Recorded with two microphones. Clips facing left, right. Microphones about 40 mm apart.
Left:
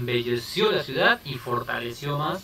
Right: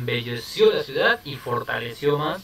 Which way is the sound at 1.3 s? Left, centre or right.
Centre.